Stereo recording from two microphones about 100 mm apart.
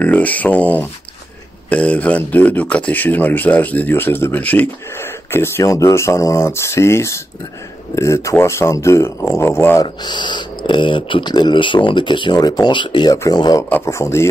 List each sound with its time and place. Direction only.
0.0 s speech: 15° left (ahead or behind)
9.8 s speech: 50° left (ahead or behind)
13.1 s speech: 40° left (ahead or behind)
13.7 s speech: 25° left (ahead or behind)